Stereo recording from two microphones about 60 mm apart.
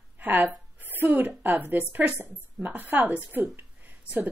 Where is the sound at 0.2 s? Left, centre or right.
Right.